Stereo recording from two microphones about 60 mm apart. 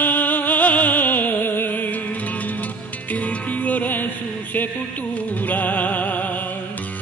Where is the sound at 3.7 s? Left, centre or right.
Left.